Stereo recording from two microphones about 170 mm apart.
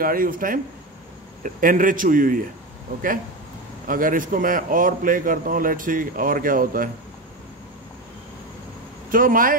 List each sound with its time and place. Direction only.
0.0 s a man's voice: 55° right (ahead or behind)
3.8 s a man's voice: 55° right (ahead or behind)
9.1 s a man's voice: 55° right (ahead or behind)